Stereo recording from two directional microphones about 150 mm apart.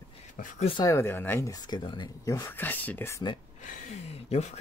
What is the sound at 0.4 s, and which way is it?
Speech, 60° left (ahead or behind).